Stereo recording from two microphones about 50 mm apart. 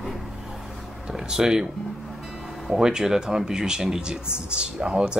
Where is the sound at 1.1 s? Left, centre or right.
Centre.